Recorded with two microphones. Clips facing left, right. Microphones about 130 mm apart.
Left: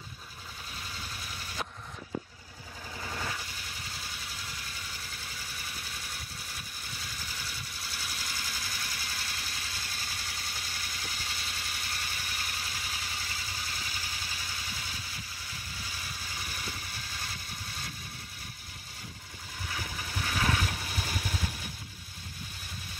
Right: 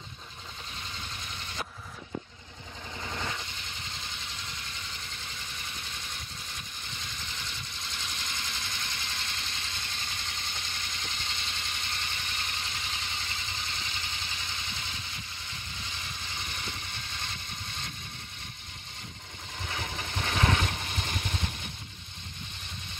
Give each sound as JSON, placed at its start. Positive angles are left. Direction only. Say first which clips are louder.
{"t": 3.4, "sound": "vehicle", "louder": "right 1 dB", "side_deg": 5}
{"t": 19.8, "sound": "vehicle", "louder": "right 3 dB", "side_deg": -25}
{"t": 20.7, "sound": "vehicle", "louder": "right 1 dB", "side_deg": 5}